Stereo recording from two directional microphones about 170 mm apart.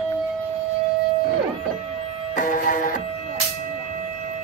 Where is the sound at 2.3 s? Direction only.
55° left (ahead or behind).